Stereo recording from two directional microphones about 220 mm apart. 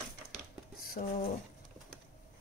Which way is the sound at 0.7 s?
45° left (ahead or behind).